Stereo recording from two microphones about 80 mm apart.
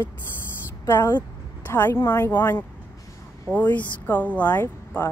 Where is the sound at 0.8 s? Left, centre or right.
Left.